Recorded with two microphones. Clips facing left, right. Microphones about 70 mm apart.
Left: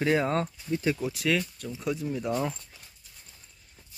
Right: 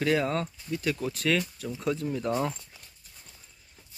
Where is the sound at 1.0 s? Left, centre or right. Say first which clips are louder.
Even; centre.